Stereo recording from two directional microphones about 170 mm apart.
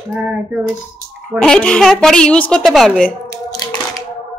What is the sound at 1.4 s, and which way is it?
Speech, 5° left (ahead or behind).